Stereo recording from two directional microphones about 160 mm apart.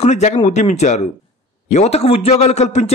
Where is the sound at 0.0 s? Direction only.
45° left (ahead or behind).